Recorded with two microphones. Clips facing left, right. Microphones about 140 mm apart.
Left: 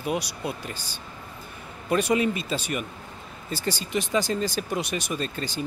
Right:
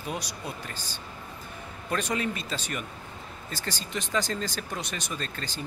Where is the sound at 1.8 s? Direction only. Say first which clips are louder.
Left 7 dB; 10° left (ahead or behind).